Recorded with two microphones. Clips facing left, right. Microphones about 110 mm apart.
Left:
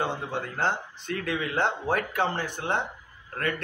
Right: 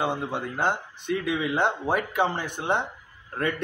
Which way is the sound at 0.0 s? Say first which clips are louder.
Right 2 dB; 15° right (ahead or behind).